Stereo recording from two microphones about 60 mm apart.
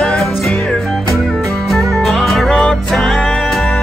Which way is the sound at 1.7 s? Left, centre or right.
Centre.